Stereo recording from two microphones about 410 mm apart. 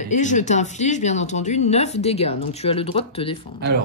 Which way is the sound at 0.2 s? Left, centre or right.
Centre.